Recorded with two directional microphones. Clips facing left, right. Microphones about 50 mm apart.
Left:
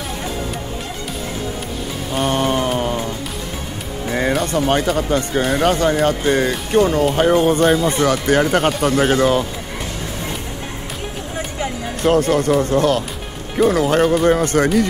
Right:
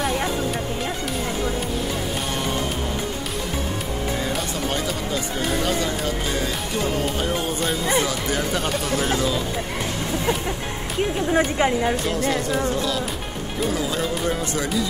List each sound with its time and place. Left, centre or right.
2.2 s music: left
4.6 s speech: left
11.3 s speech: right
12.1 s speech: left